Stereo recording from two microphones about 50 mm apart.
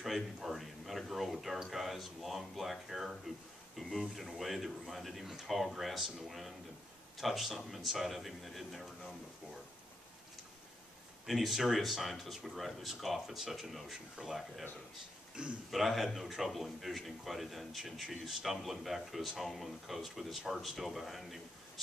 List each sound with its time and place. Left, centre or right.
0.0 s speech: centre
11.2 s speech: centre
14.2 s speech: right
15.4 s speech: centre
15.7 s speech: centre